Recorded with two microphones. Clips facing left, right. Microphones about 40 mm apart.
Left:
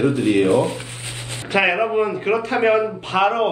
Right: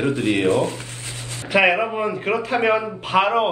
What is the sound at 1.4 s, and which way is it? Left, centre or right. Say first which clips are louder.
Speech: right 1 dB; centre.